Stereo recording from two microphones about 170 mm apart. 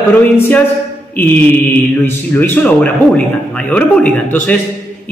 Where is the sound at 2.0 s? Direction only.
15° left (ahead or behind).